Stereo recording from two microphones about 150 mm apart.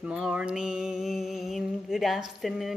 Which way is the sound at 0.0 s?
5° right (ahead or behind).